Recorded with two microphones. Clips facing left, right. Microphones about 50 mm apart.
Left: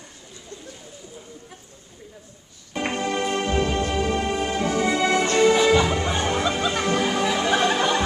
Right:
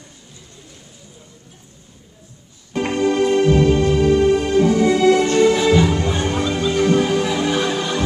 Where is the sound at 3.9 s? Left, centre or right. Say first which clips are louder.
Right 9 dB; centre.